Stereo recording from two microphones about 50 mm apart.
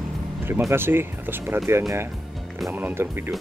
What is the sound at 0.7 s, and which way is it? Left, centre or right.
Speech, right.